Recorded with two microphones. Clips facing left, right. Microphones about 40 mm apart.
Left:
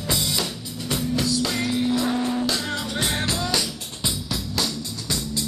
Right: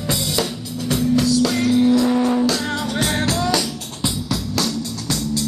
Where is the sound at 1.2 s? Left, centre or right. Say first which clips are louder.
Right 6 dB; left.